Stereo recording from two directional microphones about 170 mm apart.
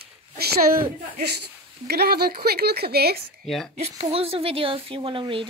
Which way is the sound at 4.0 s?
35° right (ahead or behind).